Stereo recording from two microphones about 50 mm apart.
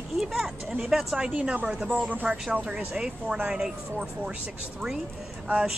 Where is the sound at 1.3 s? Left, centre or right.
Right.